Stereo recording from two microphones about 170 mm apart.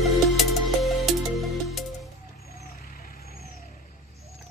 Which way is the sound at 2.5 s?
60° left (ahead or behind).